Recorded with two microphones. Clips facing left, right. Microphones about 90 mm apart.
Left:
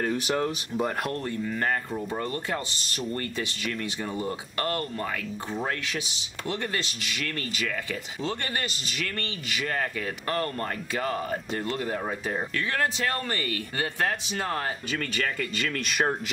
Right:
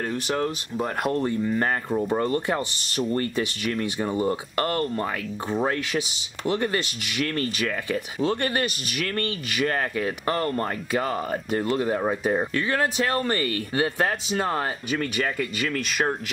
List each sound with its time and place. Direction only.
0.0 s speech: centre (ahead or behind)
1.1 s speech: 25° right (ahead or behind)
3.1 s speech: 35° right (ahead or behind)
4.2 s speech: 45° right (ahead or behind)
7.3 s speech: 35° right (ahead or behind)
9.9 s speech: 30° right (ahead or behind)
12.5 s speech: 20° right (ahead or behind)
14.9 s speech: 15° right (ahead or behind)